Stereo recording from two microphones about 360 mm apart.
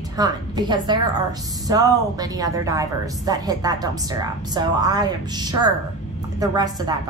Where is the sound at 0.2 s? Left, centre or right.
Centre.